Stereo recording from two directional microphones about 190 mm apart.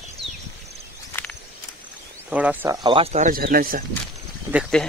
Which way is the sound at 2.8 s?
25° right (ahead or behind).